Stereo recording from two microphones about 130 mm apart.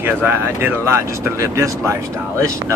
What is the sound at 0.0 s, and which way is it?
Speech, 15° right (ahead or behind).